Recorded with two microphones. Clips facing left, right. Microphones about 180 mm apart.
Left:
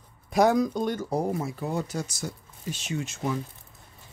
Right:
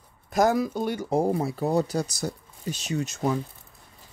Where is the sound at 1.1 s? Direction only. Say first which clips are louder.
Right 4 dB; 30° right (ahead or behind).